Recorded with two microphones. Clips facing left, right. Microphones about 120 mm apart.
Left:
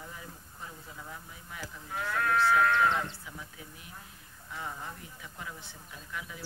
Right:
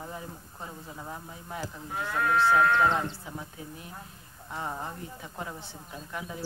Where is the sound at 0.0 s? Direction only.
35° right (ahead or behind).